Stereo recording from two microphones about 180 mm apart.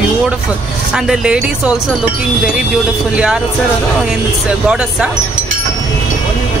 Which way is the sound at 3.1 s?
5° right (ahead or behind).